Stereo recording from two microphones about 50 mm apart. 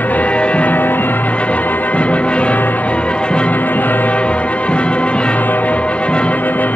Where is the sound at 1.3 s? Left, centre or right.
Left.